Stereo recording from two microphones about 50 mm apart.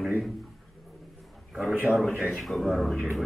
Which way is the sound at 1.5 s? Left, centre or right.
Centre.